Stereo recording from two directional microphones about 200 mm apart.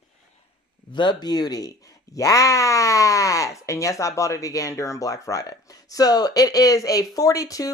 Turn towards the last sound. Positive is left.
turn(degrees=15)  # may be behind; listen again after turning